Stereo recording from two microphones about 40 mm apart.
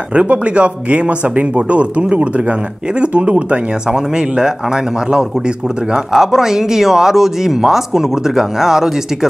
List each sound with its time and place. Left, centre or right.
0.1 s speech: right
5.9 s speech: centre